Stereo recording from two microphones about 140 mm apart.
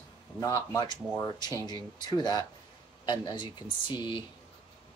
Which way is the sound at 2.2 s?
30° left (ahead or behind).